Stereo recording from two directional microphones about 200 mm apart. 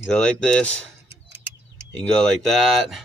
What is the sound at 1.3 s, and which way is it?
Bird, 10° right (ahead or behind).